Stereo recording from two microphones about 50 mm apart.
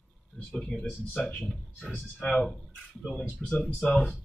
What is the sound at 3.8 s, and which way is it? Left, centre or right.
Speech, left.